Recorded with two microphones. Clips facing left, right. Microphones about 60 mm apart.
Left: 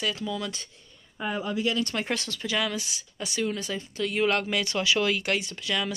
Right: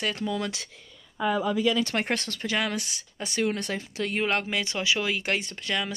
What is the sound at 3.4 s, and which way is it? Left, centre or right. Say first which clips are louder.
Speech: right 3 dB; right.